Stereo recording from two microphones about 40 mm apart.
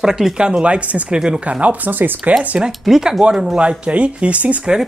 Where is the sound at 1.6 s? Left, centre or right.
Right.